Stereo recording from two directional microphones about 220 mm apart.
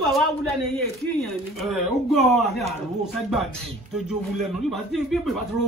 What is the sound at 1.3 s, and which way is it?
Speech, centre (ahead or behind).